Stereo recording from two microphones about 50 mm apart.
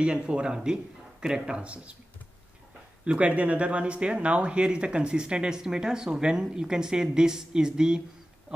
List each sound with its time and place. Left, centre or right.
0.0 s speech: centre
3.1 s speech: right
8.5 s a sound: centre